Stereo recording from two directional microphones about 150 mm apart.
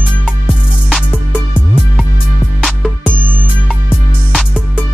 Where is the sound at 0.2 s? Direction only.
5° right (ahead or behind).